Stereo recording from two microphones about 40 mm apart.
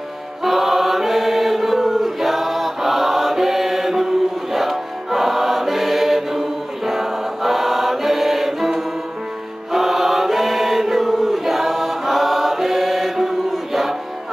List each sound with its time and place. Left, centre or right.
0.4 s chant: centre